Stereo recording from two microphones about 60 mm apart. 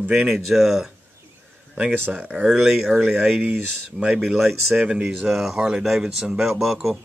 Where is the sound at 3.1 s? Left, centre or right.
Centre.